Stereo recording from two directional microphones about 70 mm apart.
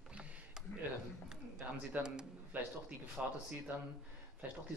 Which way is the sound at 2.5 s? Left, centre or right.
Right.